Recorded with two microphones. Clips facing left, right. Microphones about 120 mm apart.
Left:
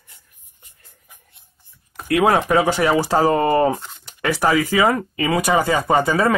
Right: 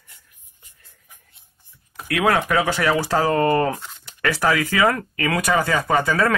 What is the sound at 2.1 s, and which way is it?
Speech, 30° left (ahead or behind).